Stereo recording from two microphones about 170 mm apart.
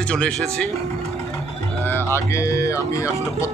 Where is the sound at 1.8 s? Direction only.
15° left (ahead or behind).